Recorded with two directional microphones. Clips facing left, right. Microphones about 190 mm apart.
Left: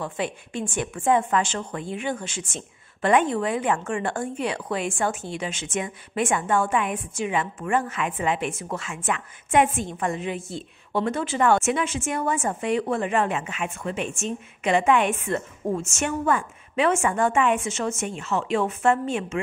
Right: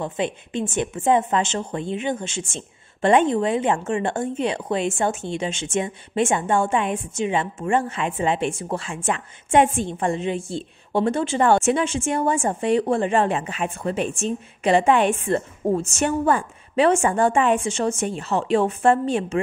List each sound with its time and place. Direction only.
0.0 s a woman's voice: 20° right (ahead or behind)